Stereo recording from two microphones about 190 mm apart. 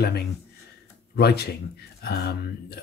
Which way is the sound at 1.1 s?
60° left (ahead or behind).